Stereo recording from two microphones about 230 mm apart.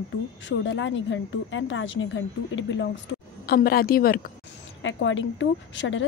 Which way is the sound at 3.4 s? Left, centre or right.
Left.